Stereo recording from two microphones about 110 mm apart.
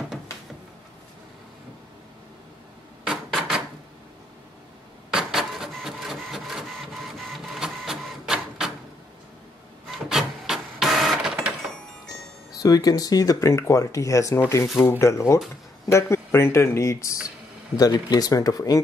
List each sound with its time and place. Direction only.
3.1 s a sound: centre (ahead or behind)
5.1 s printer: centre (ahead or behind)
9.8 s printer: 5° right (ahead or behind)
12.5 s speech: 35° left (ahead or behind)